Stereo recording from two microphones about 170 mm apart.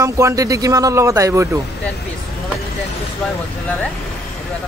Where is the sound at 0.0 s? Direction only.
20° right (ahead or behind).